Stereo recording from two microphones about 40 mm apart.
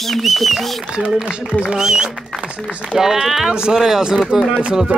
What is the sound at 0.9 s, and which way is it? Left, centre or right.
Speech, right.